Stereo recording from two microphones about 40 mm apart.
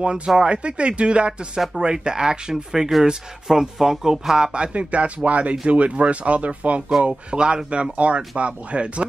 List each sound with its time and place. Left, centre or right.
0.4 s speech: right
4.5 s speech: right